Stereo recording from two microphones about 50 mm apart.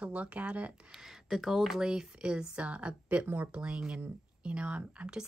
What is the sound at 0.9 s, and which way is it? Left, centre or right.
A woman's voice, centre.